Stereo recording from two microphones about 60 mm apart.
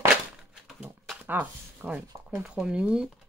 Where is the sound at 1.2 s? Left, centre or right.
Right.